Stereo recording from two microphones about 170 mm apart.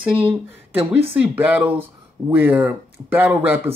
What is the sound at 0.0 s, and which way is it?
Speech, 10° right (ahead or behind).